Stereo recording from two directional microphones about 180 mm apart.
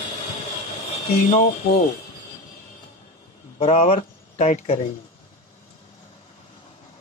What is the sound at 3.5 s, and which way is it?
Speech, 30° left (ahead or behind).